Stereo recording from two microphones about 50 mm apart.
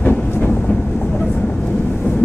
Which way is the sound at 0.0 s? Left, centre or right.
Left.